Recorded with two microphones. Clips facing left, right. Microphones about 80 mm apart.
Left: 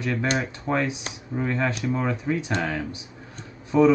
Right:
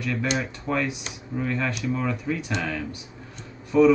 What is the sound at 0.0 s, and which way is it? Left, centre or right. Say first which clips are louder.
Speech: left 1 dB; left.